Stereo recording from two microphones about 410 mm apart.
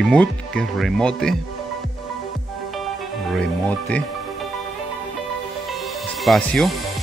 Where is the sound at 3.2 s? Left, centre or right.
Centre.